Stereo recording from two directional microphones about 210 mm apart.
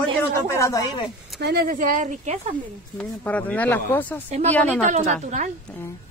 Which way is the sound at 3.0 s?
5° left (ahead or behind).